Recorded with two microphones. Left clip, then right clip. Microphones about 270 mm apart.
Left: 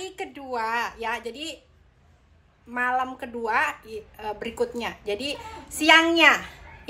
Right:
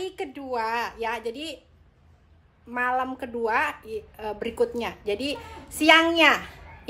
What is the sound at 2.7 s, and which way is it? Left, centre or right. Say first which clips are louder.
A woman's voice: even; centre.